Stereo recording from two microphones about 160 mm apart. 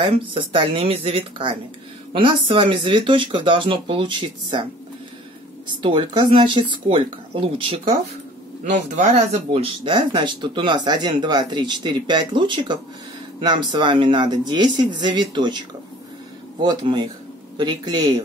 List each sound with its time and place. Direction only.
0.2 s speech: 30° right (ahead or behind)
5.7 s speech: 30° right (ahead or behind)
8.6 s speech: 50° right (ahead or behind); by 18.1 s 25° right (ahead or behind)